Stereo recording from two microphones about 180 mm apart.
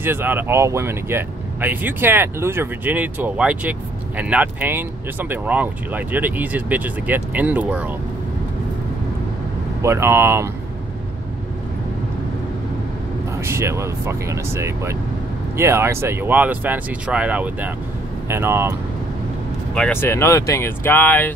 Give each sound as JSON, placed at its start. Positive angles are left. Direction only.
{"t": 0.0, "sound": "speech", "side_deg": -10}
{"t": 9.8, "sound": "speech", "side_deg": -15}
{"t": 13.4, "sound": "speech", "side_deg": -15}
{"t": 19.7, "sound": "speech", "side_deg": 10}